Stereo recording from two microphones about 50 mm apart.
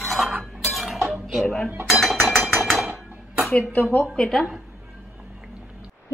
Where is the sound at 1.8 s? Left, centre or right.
Centre.